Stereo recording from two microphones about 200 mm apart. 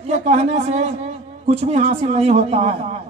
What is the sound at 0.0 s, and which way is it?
A man's voice, 35° right (ahead or behind).